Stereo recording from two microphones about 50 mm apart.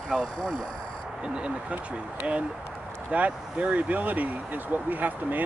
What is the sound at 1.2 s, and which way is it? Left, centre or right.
Speech, right.